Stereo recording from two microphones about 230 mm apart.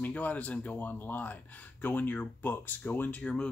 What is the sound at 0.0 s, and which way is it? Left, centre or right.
Speech, centre.